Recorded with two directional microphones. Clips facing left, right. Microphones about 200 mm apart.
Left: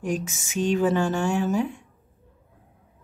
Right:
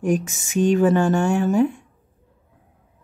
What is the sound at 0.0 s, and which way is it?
Speech, 50° right (ahead or behind).